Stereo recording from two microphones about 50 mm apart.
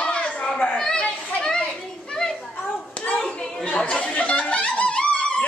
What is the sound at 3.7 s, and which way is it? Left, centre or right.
Laughter, left.